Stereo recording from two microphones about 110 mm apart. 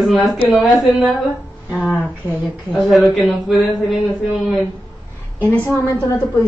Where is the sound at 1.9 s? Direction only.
15° right (ahead or behind).